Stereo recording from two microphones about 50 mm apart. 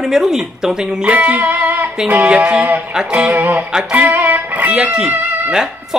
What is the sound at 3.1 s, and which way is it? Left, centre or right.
Music, right.